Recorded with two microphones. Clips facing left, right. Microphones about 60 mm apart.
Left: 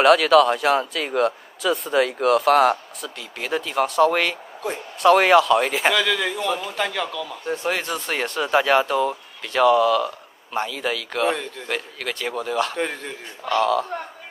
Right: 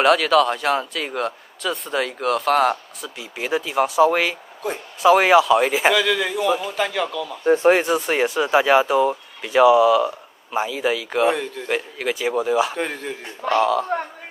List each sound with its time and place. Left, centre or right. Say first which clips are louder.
0.0 s speech: left 2 dB; centre
7.4 s speech: right 10 dB; right
7.8 s speech: right 6 dB; centre